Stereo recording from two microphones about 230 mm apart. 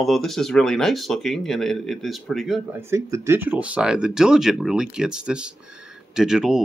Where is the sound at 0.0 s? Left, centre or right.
Centre.